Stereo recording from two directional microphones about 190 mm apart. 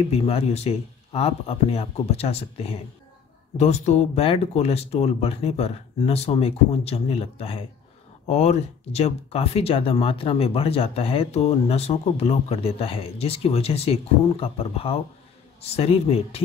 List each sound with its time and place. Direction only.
0.1 s speech: 35° left (ahead or behind)